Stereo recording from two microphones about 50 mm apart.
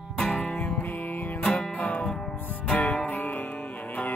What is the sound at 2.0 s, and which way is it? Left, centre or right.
Music, centre.